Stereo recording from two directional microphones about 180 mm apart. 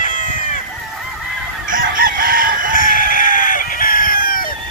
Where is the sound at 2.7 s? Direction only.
50° left (ahead or behind).